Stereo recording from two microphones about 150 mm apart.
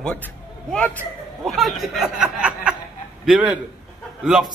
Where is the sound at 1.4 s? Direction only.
Centre (ahead or behind).